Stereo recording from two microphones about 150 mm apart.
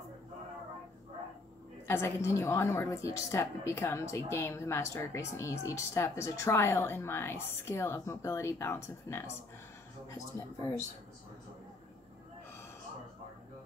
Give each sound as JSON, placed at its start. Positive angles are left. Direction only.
{"t": 1.9, "sound": "a woman's voice", "side_deg": 15}